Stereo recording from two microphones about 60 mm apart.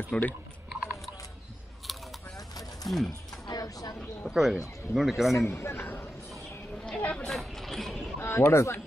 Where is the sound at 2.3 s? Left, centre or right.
Left.